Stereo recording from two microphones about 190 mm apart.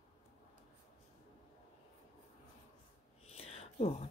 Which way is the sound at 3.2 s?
35° left (ahead or behind).